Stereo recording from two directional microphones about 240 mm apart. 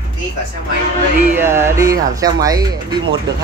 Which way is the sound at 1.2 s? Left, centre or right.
Centre.